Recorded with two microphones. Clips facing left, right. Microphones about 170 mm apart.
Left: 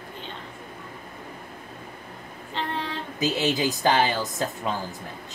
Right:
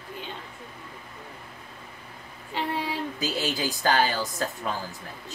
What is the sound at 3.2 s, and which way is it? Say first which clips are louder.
Speech: left 7 dB; 20° left (ahead or behind).